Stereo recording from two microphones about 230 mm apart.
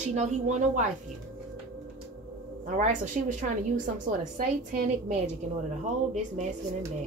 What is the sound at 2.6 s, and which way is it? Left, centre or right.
A woman's voice, right.